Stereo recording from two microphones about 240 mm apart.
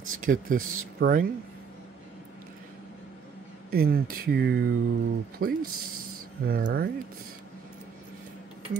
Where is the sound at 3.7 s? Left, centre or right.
Right.